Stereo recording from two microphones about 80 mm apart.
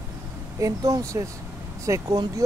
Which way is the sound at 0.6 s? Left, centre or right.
Right.